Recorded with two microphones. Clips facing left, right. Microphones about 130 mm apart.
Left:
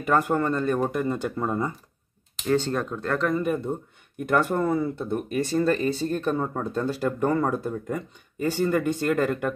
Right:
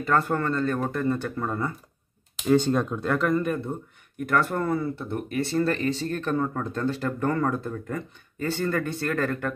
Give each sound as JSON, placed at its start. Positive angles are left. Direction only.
{"t": 0.0, "sound": "speech", "side_deg": 15}
{"t": 2.5, "sound": "speech", "side_deg": -15}
{"t": 3.3, "sound": "speech", "side_deg": 10}